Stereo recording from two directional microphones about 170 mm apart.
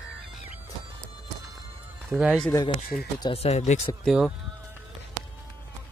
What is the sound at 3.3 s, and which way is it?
Speech, 40° left (ahead or behind).